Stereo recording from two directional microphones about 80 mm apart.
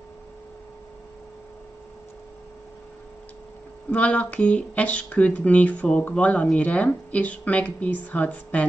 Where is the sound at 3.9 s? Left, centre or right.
Centre.